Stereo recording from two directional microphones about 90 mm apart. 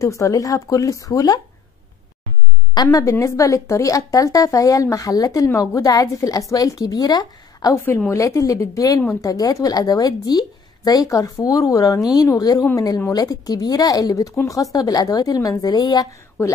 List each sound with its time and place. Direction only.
0.0 s a woman's voice: 35° left (ahead or behind)
2.7 s a woman's voice: 45° left (ahead or behind)
7.7 s a woman's voice: 25° left (ahead or behind); by 16.1 s 50° left (ahead or behind)